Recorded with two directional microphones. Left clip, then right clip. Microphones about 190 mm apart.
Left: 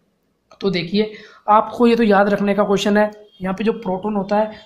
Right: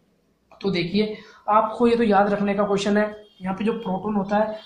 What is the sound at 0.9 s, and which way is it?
Speech, 50° left (ahead or behind).